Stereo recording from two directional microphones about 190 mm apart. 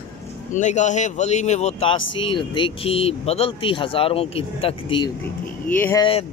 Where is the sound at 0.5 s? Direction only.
40° left (ahead or behind).